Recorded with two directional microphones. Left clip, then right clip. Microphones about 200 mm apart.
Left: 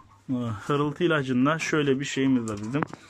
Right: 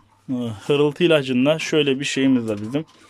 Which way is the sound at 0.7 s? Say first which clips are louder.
Right 8 dB; 50° right (ahead or behind).